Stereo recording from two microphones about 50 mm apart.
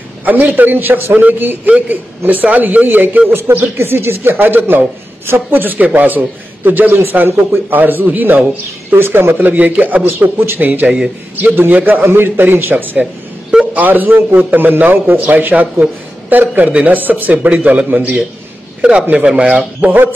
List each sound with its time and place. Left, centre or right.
0.2 s a man's voice: right
5.5 s a man's voice: right
7.8 s a man's voice: right
8.9 s a man's voice: right
10.0 s a woman's voice: right
11.8 s a woman's voice: right
13.0 s a sound: centre
13.7 s a man's voice: right